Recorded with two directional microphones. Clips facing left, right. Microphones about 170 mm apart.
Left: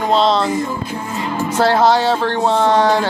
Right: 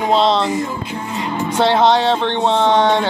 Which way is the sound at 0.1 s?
Centre (ahead or behind).